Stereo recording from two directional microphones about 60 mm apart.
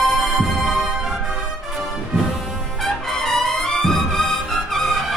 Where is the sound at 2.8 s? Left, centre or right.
Centre.